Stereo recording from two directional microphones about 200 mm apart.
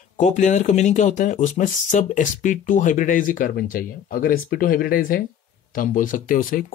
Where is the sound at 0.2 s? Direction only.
35° left (ahead or behind).